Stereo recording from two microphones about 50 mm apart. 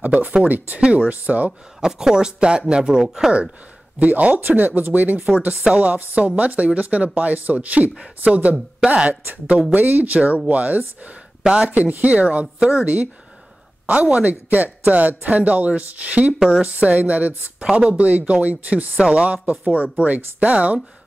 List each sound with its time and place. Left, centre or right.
0.0 s speech: right
1.8 s speech: centre
4.0 s speech: right
9.2 s speech: right
12.8 s speech: right